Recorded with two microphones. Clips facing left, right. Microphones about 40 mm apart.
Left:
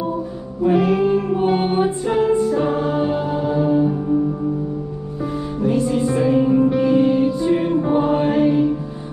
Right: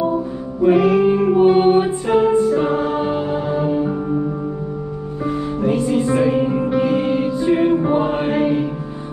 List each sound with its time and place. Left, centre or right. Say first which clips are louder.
0.7 s music: even; centre
5.2 s music: right 2 dB; right